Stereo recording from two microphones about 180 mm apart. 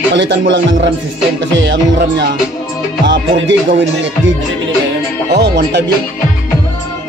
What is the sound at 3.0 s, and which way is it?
Music, 90° right.